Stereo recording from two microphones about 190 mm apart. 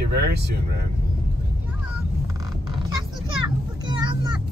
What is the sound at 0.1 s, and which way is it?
Speech, 55° right (ahead or behind).